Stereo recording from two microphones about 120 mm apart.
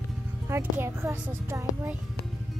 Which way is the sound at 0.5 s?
20° right (ahead or behind).